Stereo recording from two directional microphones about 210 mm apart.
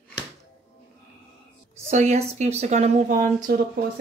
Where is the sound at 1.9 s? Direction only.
35° right (ahead or behind).